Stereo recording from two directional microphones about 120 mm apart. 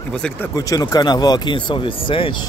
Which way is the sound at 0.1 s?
5° left (ahead or behind).